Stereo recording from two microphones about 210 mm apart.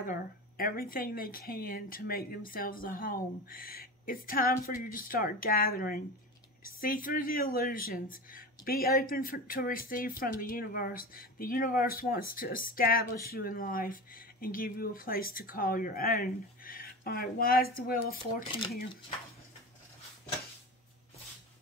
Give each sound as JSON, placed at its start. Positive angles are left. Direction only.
{"t": 0.0, "sound": "speech", "side_deg": 40}